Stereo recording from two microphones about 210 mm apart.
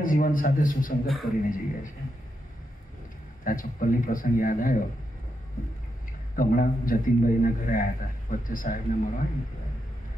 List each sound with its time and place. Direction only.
0.0 s a man's voice: 40° left (ahead or behind)
3.4 s a man's voice: 40° left (ahead or behind)
6.3 s a man's voice: 40° left (ahead or behind)